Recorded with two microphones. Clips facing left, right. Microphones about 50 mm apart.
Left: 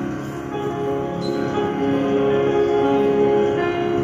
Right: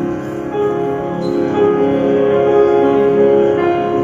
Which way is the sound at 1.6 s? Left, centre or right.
Right.